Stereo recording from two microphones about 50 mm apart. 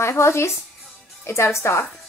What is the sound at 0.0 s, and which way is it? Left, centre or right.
Speech, left.